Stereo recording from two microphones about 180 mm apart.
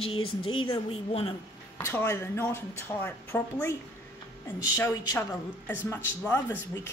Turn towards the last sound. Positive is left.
turn(degrees=15)  # may be behind; listen again after turning